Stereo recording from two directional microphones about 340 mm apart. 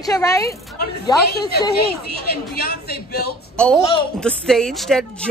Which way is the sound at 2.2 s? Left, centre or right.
Left.